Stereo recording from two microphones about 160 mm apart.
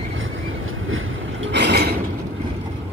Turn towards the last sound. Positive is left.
turn(degrees=-90)